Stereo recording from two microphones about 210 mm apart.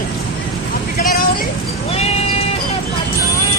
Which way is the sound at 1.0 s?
40° left (ahead or behind).